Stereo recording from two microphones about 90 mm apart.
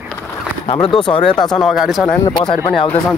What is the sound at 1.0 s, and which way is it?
Speech, 60° left (ahead or behind).